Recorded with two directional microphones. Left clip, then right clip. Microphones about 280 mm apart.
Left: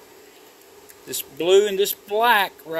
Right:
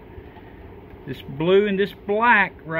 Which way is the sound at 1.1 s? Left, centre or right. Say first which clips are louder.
Left 1 dB; centre.